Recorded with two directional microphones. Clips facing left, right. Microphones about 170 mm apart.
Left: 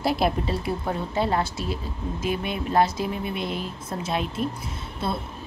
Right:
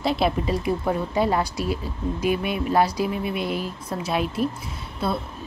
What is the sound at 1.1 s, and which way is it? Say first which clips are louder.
Speech: even; 15° right (ahead or behind).